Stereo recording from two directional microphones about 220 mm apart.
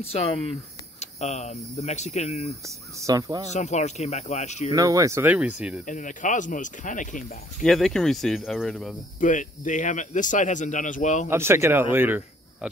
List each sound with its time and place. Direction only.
0.0 s speech: 25° left (ahead or behind)
3.0 s speech: 15° right (ahead or behind)
3.4 s speech: 30° left (ahead or behind)
4.7 s speech: 15° right (ahead or behind)
5.9 s speech: 35° left (ahead or behind)
7.6 s speech: centre (ahead or behind)
9.2 s speech: 35° left (ahead or behind)
11.2 s speech: 10° right (ahead or behind)